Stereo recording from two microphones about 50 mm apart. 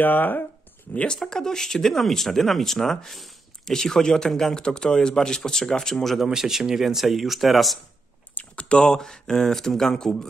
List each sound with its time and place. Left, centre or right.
0.0 s speech: left
0.9 s speech: centre
6.2 s speech: centre
8.5 s speech: centre